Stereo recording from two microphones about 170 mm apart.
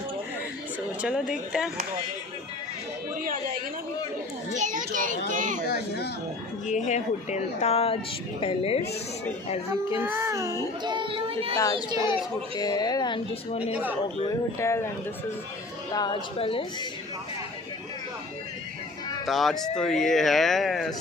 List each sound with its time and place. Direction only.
1.0 s speech: 5° right (ahead or behind)
4.6 s a child's voice: 50° right (ahead or behind)
5.7 s speech: 75° left (ahead or behind)
6.7 s speech: 45° left (ahead or behind)
9.9 s a child's voice: 15° right (ahead or behind)
10.8 s a child's voice: 25° right (ahead or behind)
12.5 s speech: 25° left (ahead or behind)
14.6 s speech: 15° left (ahead or behind)
15.9 s speech: 25° left (ahead or behind)
19.2 s speech: centre (ahead or behind)